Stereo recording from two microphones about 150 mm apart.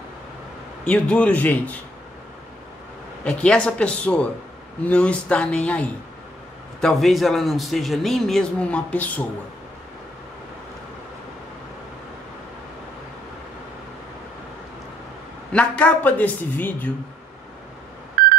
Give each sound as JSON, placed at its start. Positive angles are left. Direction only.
{"t": 0.8, "sound": "a woman's voice", "side_deg": 5}
{"t": 3.3, "sound": "a woman's voice", "side_deg": 5}
{"t": 15.5, "sound": "a woman's voice", "side_deg": 10}
{"t": 18.2, "sound": "telephone dialing", "side_deg": -75}